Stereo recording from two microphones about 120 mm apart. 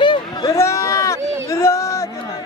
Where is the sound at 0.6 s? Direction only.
25° left (ahead or behind).